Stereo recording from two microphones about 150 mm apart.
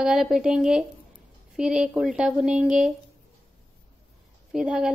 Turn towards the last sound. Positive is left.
turn(degrees=-5)  # may be behind; listen again after turning